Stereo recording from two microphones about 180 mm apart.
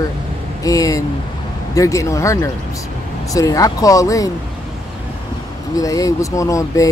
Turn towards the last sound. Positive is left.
turn(degrees=15)  # may be behind; listen again after turning